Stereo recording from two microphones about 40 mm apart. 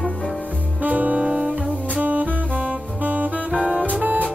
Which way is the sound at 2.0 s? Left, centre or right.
Right.